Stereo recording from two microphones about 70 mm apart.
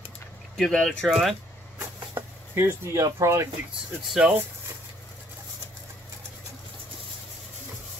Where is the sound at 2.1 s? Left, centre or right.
Right.